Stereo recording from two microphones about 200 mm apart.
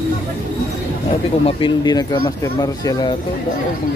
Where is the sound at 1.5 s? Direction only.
20° left (ahead or behind).